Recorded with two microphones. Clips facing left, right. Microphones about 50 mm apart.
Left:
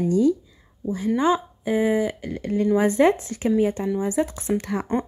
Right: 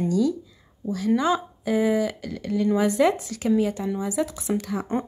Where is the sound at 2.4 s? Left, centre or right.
Left.